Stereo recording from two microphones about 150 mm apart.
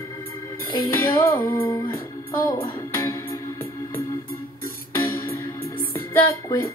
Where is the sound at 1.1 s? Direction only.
30° left (ahead or behind).